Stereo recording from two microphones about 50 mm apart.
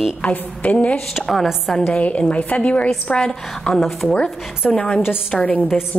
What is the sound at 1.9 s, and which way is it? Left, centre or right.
A woman's voice, left.